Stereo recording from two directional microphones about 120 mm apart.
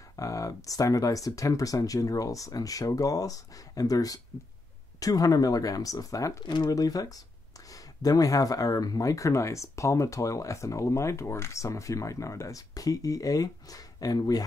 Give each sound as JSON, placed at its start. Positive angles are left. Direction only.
{"t": 0.1, "sound": "speech", "side_deg": 30}